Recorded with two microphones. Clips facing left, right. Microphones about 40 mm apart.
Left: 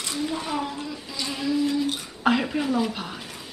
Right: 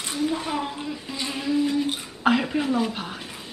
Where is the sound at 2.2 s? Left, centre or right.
Centre.